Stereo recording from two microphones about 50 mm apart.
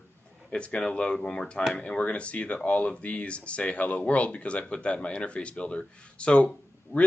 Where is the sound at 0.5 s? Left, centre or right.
Left.